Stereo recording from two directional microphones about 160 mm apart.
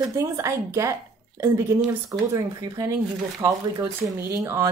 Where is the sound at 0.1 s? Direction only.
20° right (ahead or behind).